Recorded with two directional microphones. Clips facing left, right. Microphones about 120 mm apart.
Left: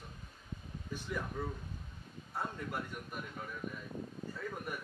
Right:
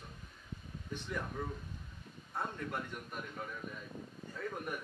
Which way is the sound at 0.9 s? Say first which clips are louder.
Left 1 dB; 5° left (ahead or behind).